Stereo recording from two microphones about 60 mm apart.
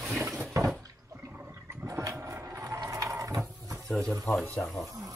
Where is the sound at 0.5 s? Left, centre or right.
Right.